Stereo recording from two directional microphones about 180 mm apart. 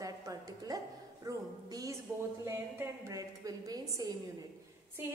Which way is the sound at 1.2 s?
20° right (ahead or behind).